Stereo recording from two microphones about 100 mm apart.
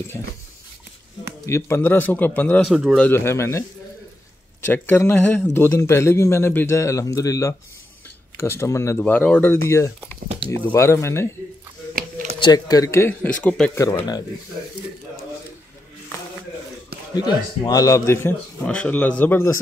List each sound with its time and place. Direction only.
1.4 s a man's voice: 30° left (ahead or behind)
2.7 s speech: 5° right (ahead or behind)
3.0 s a man's voice: 25° left (ahead or behind)
4.6 s a man's voice: 20° left (ahead or behind)
9.0 s a man's voice: 15° left (ahead or behind)
10.2 s speech: 60° right (ahead or behind)
10.6 s a man's voice: 25° left (ahead or behind)
12.4 s speech: 45° left (ahead or behind)
12.9 s speech: 20° left (ahead or behind)
17.1 s a man's voice: 40° left (ahead or behind); by 19.6 s 25° left (ahead or behind)